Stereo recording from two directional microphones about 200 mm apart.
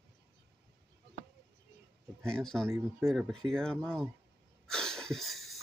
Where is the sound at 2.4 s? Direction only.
Centre (ahead or behind).